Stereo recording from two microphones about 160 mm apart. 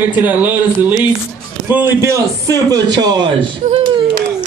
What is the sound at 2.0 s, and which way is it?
Speech, 20° right (ahead or behind).